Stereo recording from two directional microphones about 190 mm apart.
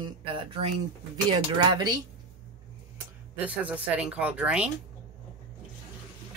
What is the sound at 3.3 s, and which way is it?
Speech, 10° right (ahead or behind).